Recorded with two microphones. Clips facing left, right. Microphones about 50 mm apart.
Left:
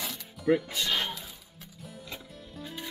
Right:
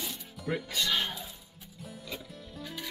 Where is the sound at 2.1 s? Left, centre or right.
Centre.